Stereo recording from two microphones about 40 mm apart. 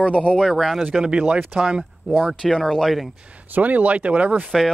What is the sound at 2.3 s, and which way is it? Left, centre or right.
Speech, centre.